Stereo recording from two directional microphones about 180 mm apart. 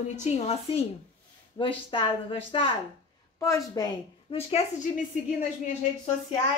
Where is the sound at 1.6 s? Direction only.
30° left (ahead or behind).